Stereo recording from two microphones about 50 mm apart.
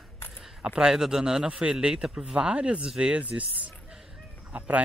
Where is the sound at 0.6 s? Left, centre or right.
Centre.